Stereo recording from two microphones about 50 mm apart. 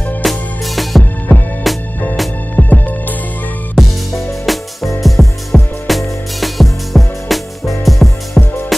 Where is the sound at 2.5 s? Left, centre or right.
Left.